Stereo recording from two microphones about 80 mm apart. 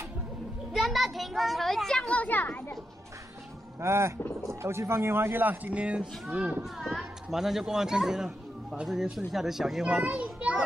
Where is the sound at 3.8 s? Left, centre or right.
Right; by 10.0 s centre.